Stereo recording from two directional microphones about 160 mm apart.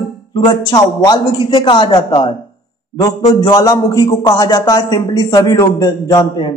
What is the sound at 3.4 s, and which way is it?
A man's voice, 20° left (ahead or behind).